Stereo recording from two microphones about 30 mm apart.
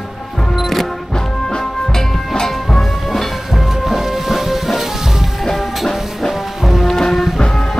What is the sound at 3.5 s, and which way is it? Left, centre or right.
Music, centre.